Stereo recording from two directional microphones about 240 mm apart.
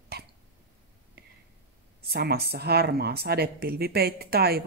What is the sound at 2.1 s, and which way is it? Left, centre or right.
Speech, right.